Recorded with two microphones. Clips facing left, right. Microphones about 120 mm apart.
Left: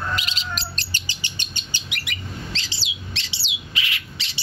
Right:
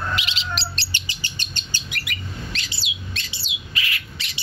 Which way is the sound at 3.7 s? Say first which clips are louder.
Right 1 dB; 20° left (ahead or behind).